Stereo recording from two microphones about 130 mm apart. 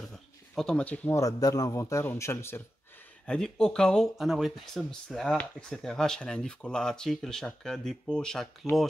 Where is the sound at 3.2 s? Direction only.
5° left (ahead or behind).